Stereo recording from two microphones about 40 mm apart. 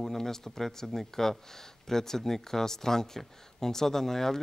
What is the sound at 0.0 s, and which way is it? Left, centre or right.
Speech, centre.